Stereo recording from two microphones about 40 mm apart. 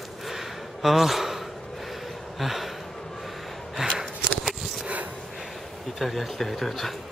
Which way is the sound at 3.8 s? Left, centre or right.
Centre.